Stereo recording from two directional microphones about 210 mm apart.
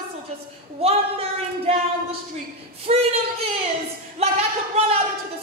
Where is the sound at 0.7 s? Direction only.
30° right (ahead or behind).